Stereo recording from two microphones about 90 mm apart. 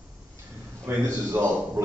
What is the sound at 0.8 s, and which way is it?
Speech, 30° right (ahead or behind).